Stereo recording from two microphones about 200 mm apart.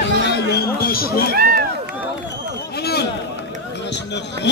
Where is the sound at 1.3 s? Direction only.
50° right (ahead or behind).